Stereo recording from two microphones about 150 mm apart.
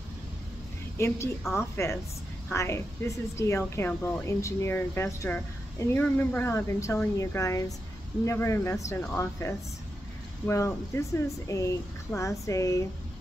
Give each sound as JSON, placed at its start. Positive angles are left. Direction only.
{"t": 0.9, "sound": "speech", "side_deg": 20}